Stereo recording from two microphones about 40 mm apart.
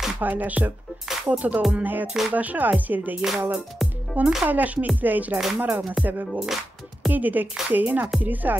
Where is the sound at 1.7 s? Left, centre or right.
Right.